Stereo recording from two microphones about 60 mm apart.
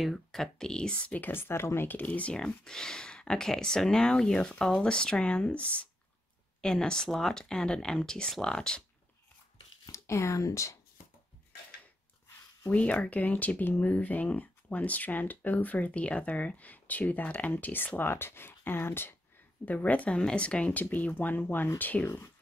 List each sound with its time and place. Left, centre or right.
0.0 s speech: centre; by 1.3 s left
1.3 s speech: left
1.9 s speech: left
2.3 s speech: centre
6.6 s speech: centre
9.8 s speech: left
12.7 s speech: left
19.6 s speech: left